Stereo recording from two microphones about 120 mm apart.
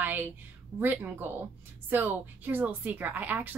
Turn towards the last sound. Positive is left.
turn(degrees=-15)  # may be behind; listen again after turning